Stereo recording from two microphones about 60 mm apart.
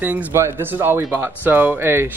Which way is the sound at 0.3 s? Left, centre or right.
Right.